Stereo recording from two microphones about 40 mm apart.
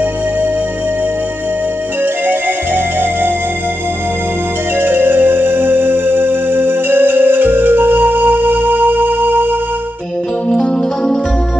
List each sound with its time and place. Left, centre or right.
2.2 s music: right
4.7 s music: right
10.5 s music: centre